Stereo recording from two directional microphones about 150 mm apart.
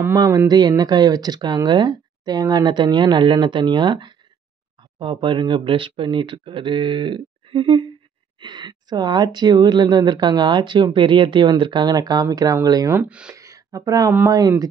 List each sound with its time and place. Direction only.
0.5 s speech: 25° right (ahead or behind)
13.3 s a sound: 20° right (ahead or behind)
14.1 s speech: 20° right (ahead or behind)